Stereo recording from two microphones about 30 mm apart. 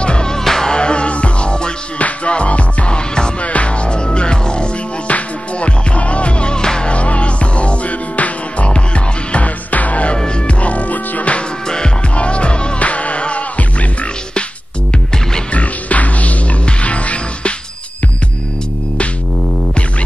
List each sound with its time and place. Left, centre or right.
0.0 s music: left
0.3 s music: centre
0.7 s music: left
2.0 s music: left
5.0 s music: left
6.9 s music: left
8.7 s music: left
9.4 s music: left
12.2 s music: left
12.7 s music: left
15.5 s music: left